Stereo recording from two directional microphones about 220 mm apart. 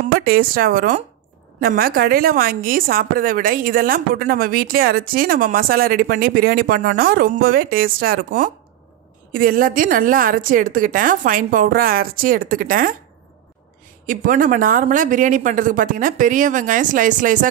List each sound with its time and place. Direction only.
0.1 s a woman's voice: 40° right (ahead or behind)
14.0 s a woman's voice: 40° right (ahead or behind)